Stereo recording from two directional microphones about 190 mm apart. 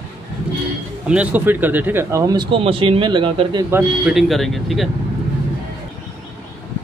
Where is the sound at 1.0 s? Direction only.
5° right (ahead or behind); by 3.6 s 25° right (ahead or behind).